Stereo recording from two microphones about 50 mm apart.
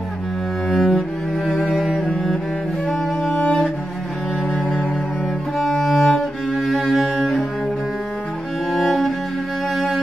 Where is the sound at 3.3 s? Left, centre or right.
Left.